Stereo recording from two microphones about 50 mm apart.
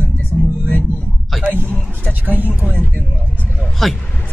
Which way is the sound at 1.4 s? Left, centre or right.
Right.